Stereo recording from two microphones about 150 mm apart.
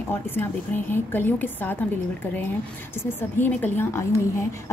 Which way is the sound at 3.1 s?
15° left (ahead or behind).